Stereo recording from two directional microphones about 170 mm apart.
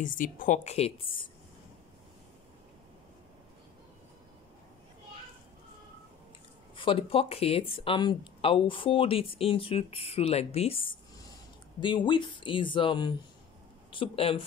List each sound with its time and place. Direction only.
0.0 s speech: 50° left (ahead or behind); by 1.3 s 30° left (ahead or behind)
6.7 s speech: 30° left (ahead or behind)